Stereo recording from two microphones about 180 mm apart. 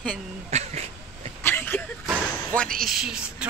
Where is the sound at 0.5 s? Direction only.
35° right (ahead or behind).